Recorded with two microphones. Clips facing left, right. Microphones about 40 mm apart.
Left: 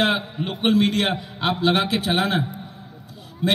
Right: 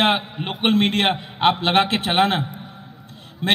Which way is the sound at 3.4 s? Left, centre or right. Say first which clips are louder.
Right 1 dB; right.